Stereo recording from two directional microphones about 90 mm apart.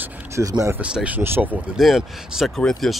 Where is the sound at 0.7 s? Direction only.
15° right (ahead or behind).